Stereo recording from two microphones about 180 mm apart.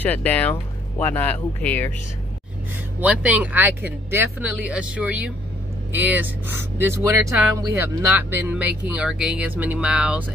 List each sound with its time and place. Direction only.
0.0 s speech: 10° left (ahead or behind)
3.0 s speech: 5° right (ahead or behind)